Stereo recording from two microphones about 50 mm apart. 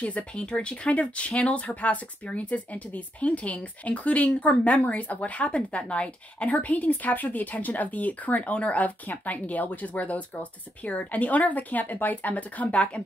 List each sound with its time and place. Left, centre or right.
0.0 s a woman's voice: left